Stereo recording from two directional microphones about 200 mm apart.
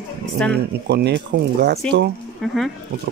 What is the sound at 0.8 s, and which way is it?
Speech, 55° right (ahead or behind).